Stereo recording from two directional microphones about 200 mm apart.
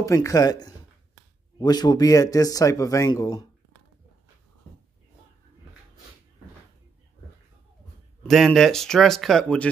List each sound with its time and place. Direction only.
0.0 s speech: 15° left (ahead or behind)
8.2 s speech: centre (ahead or behind)